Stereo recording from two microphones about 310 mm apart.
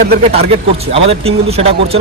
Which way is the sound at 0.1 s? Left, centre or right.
Right.